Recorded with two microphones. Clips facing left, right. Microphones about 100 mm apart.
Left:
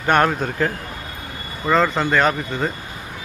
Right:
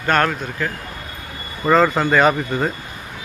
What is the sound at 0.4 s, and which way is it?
Speech, 35° left (ahead or behind).